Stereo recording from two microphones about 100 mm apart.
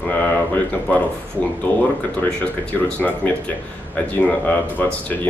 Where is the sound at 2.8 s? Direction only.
15° left (ahead or behind).